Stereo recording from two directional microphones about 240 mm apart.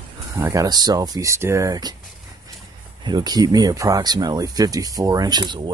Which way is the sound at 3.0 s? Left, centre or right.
Centre.